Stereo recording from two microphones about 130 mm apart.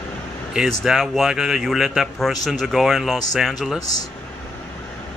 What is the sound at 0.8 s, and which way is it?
A man's voice, centre (ahead or behind).